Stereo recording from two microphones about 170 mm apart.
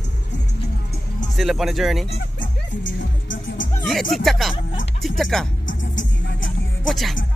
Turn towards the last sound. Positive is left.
turn(degrees=0)  # may be behind; listen again after turning